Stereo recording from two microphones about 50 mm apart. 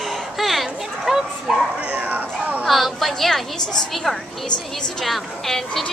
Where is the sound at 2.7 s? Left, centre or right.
Centre.